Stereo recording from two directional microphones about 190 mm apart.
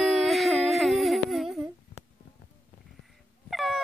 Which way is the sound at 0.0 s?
Centre (ahead or behind).